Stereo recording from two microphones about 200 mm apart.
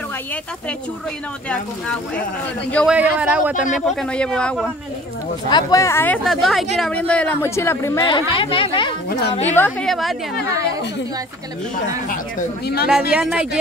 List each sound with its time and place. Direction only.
2.7 s speech: 5° left (ahead or behind)
3.0 s speech: 5° right (ahead or behind)
5.5 s speech: 20° left (ahead or behind)
8.1 s a woman's voice: 25° left (ahead or behind)
9.6 s speech: 5° left (ahead or behind)
12.1 s speech: 50° left (ahead or behind)
13.1 s speech: 5° right (ahead or behind)